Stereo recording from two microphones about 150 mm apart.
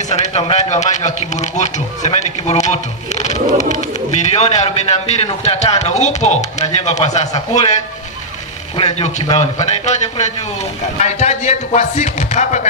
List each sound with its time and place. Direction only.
0.1 s a man's voice: 40° left (ahead or behind)
8.7 s a man's voice: 45° left (ahead or behind)